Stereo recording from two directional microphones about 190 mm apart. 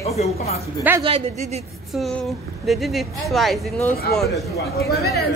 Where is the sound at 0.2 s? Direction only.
35° left (ahead or behind).